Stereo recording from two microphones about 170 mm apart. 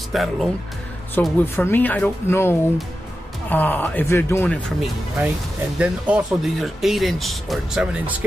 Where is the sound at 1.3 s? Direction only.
15° left (ahead or behind).